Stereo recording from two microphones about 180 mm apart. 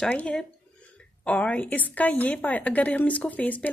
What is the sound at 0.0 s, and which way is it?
A woman's voice, 5° left (ahead or behind).